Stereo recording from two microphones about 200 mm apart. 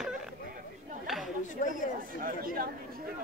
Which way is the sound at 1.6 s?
40° left (ahead or behind).